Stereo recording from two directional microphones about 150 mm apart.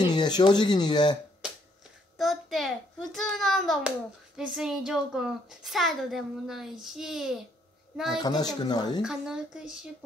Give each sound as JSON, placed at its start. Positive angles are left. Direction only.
{"t": 0.0, "sound": "speech", "side_deg": 30}
{"t": 2.1, "sound": "a child's voice", "side_deg": 0}
{"t": 8.2, "sound": "speech", "side_deg": 25}
{"t": 9.0, "sound": "a woman's voice", "side_deg": -5}